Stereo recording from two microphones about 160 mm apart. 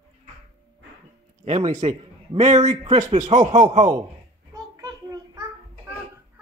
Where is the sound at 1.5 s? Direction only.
45° right (ahead or behind).